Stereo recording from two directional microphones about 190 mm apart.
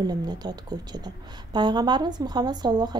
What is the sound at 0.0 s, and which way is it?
A woman's voice, 20° right (ahead or behind).